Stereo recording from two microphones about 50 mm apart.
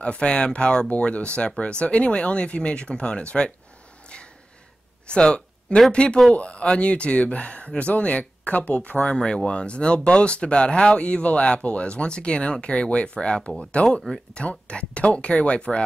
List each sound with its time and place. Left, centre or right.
0.0 s speech: left
5.0 s a sound: centre
5.9 s speech: centre